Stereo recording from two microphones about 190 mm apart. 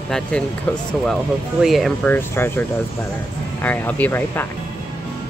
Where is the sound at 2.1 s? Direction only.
10° left (ahead or behind).